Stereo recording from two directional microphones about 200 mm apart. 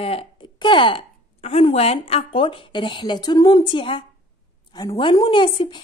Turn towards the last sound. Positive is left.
turn(degrees=25)  # may be behind; listen again after turning